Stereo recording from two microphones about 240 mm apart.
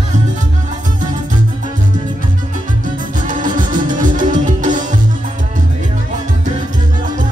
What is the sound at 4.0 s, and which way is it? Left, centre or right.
Music, right.